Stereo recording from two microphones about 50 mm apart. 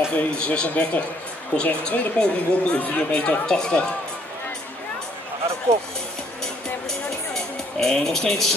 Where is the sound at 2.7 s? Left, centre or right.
Left.